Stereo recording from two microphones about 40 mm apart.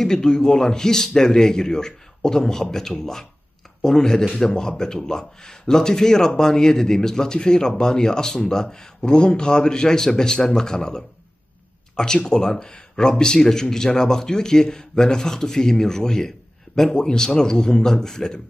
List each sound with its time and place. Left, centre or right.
0.0 s speech: centre